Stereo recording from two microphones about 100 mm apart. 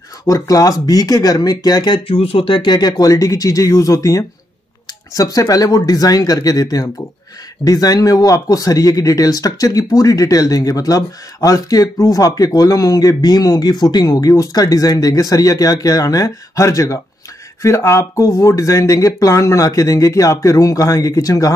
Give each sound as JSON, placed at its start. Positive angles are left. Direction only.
{"t": 0.3, "sound": "speech", "side_deg": 35}
{"t": 2.0, "sound": "speech", "side_deg": 70}